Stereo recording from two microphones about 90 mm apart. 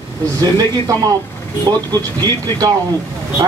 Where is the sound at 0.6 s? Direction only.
45° right (ahead or behind).